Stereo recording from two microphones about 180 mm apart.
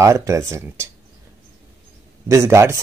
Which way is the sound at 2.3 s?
15° right (ahead or behind).